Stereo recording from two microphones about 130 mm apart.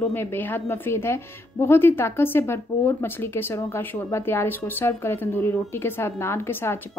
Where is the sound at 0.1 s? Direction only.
15° left (ahead or behind).